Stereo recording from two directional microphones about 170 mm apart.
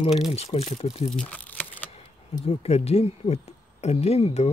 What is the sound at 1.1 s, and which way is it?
Crumpling, 10° left (ahead or behind).